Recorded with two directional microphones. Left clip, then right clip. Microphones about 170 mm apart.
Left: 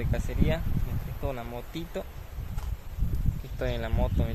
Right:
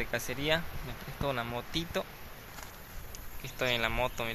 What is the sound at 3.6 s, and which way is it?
Speech, 45° left (ahead or behind).